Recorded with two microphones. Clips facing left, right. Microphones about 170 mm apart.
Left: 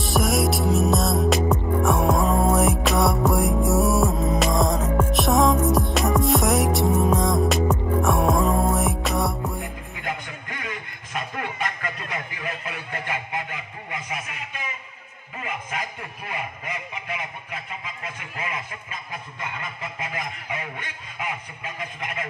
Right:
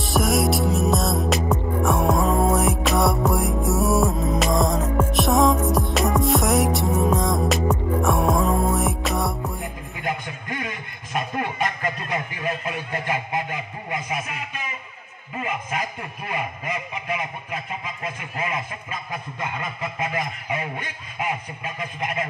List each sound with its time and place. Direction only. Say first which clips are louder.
0.0 s music: right 1 dB; centre (ahead or behind)
11.1 s a sound: right 4 dB; 45° right (ahead or behind)
18.4 s a man's voice: right 4 dB; 40° right (ahead or behind)
20.0 s a man's voice: right 5 dB; 35° right (ahead or behind)